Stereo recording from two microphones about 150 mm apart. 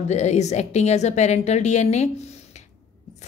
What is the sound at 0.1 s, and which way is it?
A woman's voice, 50° left (ahead or behind).